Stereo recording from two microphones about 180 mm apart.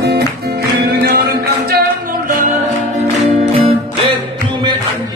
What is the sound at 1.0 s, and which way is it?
Music, 60° right (ahead or behind).